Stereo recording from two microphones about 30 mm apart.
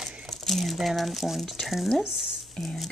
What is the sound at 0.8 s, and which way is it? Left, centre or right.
Speech, centre.